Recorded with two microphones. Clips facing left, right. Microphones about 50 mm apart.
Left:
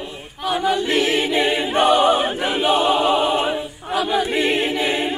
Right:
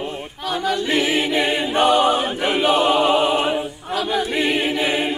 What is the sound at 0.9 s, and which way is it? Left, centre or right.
A capella, centre.